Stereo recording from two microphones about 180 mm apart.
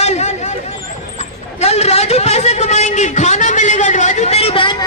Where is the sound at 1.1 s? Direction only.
35° left (ahead or behind).